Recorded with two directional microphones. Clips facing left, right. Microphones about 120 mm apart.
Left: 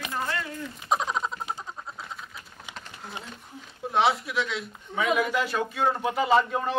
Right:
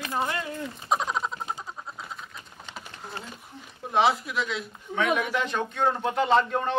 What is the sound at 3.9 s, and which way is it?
A man's voice, centre (ahead or behind).